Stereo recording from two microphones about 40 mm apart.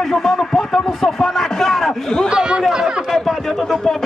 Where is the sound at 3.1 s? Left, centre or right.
Centre.